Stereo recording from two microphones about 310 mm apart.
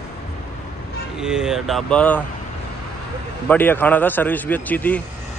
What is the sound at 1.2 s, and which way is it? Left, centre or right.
A man's voice, centre.